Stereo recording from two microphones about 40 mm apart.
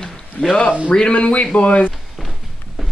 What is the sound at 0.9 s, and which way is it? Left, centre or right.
A man's voice, left.